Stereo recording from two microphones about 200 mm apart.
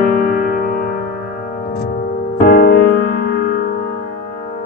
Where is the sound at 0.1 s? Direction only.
45° left (ahead or behind).